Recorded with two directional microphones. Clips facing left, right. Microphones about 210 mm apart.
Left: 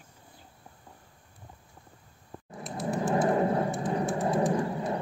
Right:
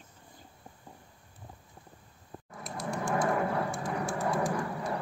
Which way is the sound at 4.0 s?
20° left (ahead or behind).